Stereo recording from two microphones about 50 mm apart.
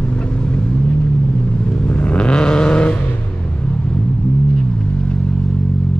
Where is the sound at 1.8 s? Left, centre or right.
Left.